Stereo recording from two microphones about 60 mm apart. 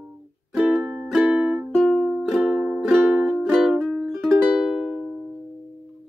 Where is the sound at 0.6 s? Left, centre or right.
Right.